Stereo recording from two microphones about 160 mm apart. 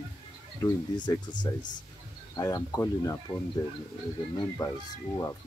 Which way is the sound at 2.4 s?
20° left (ahead or behind).